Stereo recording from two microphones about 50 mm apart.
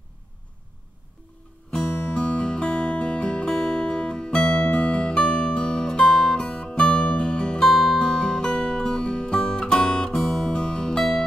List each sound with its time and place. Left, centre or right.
2.0 s music: left
6.0 s music: centre
7.6 s music: centre
10.5 s music: centre